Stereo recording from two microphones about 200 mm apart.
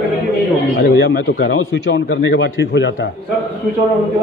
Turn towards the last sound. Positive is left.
turn(degrees=60)  # may be behind; listen again after turning